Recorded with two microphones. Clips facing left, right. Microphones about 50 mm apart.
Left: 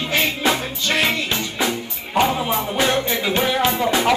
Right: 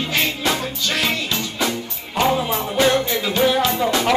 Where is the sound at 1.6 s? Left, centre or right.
Centre.